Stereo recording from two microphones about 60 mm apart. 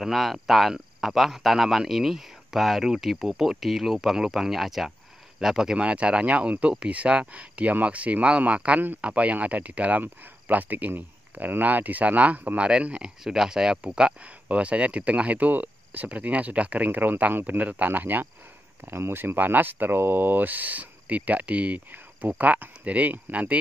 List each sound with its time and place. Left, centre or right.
0.0 s speech: centre; by 23.5 s right